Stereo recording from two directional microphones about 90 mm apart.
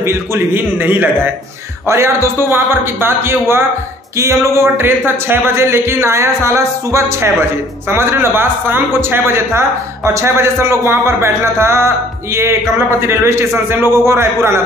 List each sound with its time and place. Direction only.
0.0 s a man's voice: 30° right (ahead or behind)
13.0 s a man's voice: 30° right (ahead or behind)